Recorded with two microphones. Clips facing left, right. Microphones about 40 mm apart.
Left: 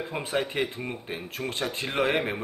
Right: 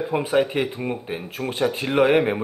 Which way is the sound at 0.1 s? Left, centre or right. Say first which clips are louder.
Right 9 dB; centre.